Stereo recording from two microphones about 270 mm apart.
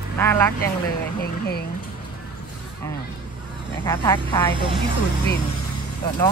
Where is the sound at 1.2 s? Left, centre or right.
Left.